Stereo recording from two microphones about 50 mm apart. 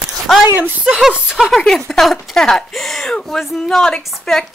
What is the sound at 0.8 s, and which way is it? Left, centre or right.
Speech, centre.